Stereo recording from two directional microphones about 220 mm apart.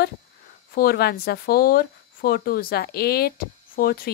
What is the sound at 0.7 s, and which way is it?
Speech, 45° left (ahead or behind).